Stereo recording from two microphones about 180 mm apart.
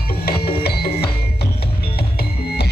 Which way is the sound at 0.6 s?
60° left (ahead or behind).